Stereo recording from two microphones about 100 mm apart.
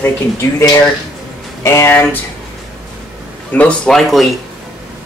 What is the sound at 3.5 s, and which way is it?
Speech, 10° left (ahead or behind).